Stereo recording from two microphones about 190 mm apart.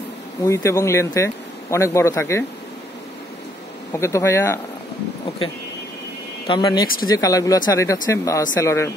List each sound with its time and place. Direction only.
0.4 s speech: 15° left (ahead or behind)
3.9 s speech: 15° left (ahead or behind)
6.4 s speech: 25° left (ahead or behind)